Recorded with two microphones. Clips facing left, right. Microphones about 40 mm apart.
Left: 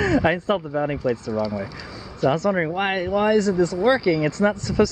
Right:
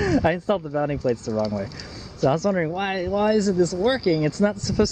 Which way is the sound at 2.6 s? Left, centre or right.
Left.